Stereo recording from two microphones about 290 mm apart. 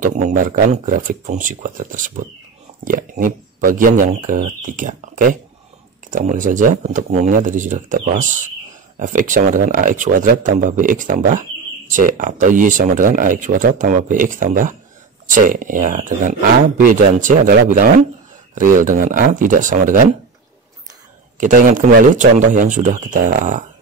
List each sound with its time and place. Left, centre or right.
0.0 s speech: right
21.4 s speech: right